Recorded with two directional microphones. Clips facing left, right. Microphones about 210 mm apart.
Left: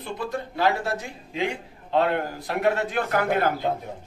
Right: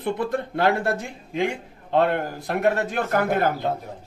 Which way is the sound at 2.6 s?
45° right (ahead or behind).